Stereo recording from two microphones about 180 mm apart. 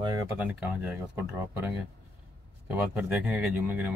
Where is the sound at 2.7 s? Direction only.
5° right (ahead or behind).